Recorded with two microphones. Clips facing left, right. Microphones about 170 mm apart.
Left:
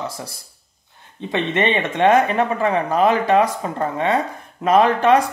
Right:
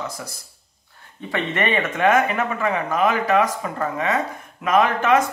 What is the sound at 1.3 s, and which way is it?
Speech, 25° left (ahead or behind).